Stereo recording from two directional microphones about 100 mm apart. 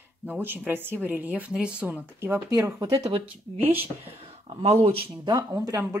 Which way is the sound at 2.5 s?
35° right (ahead or behind).